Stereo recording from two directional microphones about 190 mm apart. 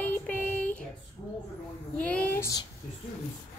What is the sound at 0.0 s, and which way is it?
Music, 10° left (ahead or behind).